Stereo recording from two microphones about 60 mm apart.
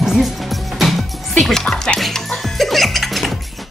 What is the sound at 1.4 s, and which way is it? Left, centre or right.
Music, centre.